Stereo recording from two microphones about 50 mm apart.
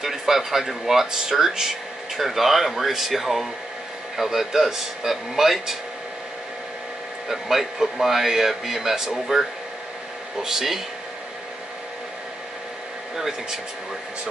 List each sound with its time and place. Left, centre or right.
0.0 s a man's voice: centre
7.2 s a man's voice: centre
13.1 s a man's voice: centre